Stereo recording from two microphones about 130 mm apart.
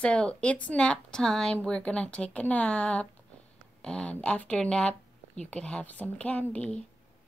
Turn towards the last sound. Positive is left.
turn(degrees=10)  # may be behind; listen again after turning